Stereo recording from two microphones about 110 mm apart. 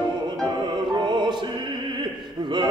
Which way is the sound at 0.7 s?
45° right (ahead or behind).